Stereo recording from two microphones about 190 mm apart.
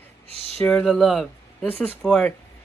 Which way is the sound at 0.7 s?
5° left (ahead or behind).